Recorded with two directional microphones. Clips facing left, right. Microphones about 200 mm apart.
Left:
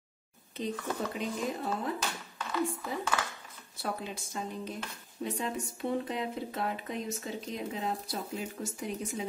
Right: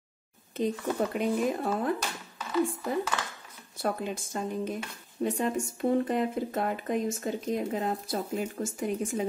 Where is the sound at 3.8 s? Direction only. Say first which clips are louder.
Right 6 dB; 50° right (ahead or behind).